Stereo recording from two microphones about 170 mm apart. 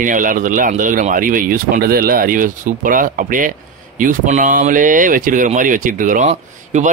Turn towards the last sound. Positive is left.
turn(degrees=-45)  # may be behind; listen again after turning